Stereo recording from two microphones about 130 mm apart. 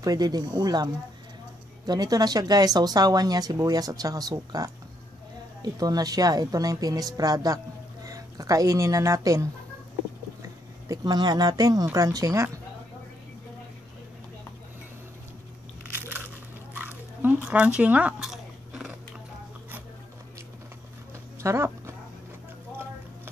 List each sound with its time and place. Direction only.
0.0 s speech: 30° right (ahead or behind)
1.9 s a woman's voice: 30° right (ahead or behind)
16.7 s biting: 15° right (ahead or behind)
21.4 s horse: 20° right (ahead or behind)